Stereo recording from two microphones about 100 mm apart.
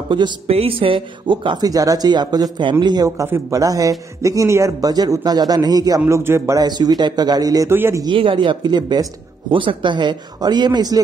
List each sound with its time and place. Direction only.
0.1 s speech: 55° right (ahead or behind)
0.5 s speech: 80° right; by 1.7 s 50° right (ahead or behind)
1.7 s a man's voice: 35° right (ahead or behind)
3.3 s a man's voice: 25° right (ahead or behind)
6.0 s speech: 25° right (ahead or behind)
6.6 s speech: 40° right (ahead or behind)
7.7 s speech: 20° right (ahead or behind)
8.0 s speech: 55° right (ahead or behind)
9.5 s speech: 55° right (ahead or behind)